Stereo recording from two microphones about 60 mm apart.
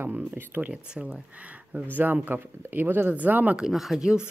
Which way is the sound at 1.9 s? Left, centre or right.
Right.